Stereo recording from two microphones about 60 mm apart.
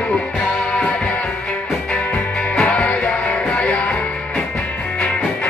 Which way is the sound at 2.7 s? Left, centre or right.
Left.